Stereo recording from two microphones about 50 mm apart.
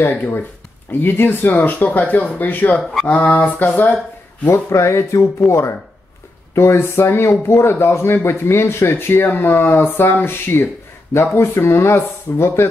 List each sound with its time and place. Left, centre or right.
0.0 s speech: left
4.5 s speech: left
8.9 s speech: left